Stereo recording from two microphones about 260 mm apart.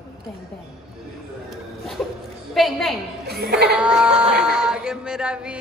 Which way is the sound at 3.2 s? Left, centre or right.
Right.